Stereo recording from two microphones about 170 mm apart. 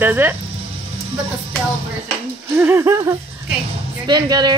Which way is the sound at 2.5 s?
15° right (ahead or behind).